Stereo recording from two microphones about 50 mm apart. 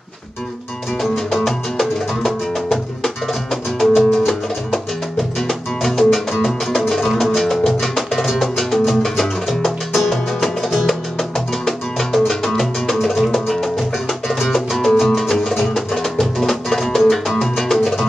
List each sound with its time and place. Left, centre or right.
1.1 s music: centre
5.5 s music: centre